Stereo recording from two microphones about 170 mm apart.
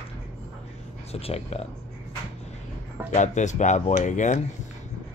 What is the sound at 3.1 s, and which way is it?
Speech, 45° left (ahead or behind).